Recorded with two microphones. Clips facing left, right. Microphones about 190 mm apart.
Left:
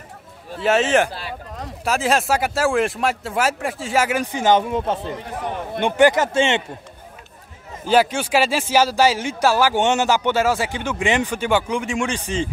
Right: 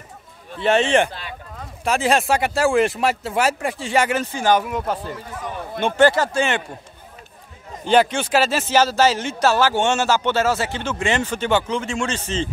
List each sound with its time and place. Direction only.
0.6 s speech: 5° left (ahead or behind)
1.1 s a sound: 35° left (ahead or behind)
1.9 s speech: centre (ahead or behind)
4.2 s speech: 20° left (ahead or behind)
7.8 s a man's voice: 5° left (ahead or behind)